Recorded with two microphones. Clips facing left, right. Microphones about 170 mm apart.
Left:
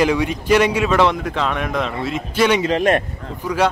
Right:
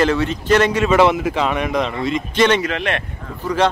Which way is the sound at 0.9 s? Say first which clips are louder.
Right 3 dB; 5° right (ahead or behind).